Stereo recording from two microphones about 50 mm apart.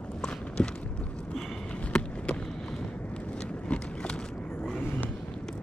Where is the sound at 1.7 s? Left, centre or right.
Left.